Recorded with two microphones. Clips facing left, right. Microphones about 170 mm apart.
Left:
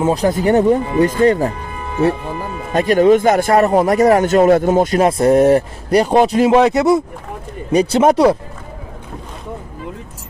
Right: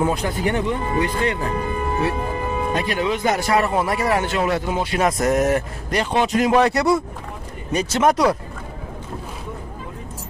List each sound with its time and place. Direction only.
0.1 s speech: 40° left (ahead or behind)
2.7 s speech: 45° left (ahead or behind)
5.0 s speech: 30° left (ahead or behind)
6.5 s speech: 20° left (ahead or behind)
7.7 s speech: 35° left (ahead or behind)